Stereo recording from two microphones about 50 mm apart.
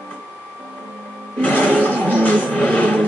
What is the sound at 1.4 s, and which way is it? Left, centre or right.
Music, left.